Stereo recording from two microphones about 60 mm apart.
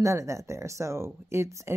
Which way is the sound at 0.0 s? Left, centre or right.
Right.